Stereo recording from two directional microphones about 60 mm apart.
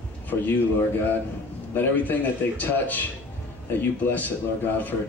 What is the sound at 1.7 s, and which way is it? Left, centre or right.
Speech, left.